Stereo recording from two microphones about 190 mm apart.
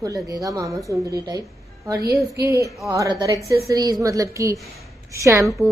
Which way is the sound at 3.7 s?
20° right (ahead or behind).